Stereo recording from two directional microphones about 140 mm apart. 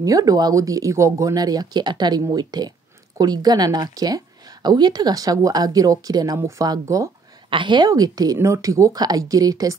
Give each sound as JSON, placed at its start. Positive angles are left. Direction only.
{"t": 0.0, "sound": "speech", "side_deg": -25}
{"t": 7.4, "sound": "speech", "side_deg": -35}